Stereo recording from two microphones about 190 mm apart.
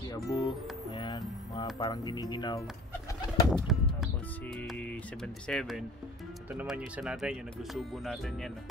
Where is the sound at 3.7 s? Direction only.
Centre (ahead or behind).